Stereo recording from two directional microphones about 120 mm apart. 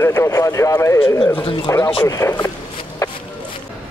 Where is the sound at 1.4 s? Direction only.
50° left (ahead or behind).